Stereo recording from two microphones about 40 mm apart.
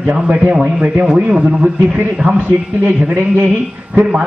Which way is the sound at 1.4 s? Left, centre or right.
Right.